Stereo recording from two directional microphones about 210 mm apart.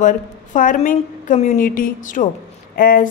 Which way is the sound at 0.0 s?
40° left (ahead or behind).